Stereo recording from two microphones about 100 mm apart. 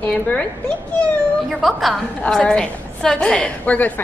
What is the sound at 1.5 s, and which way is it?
A woman's voice, centre (ahead or behind).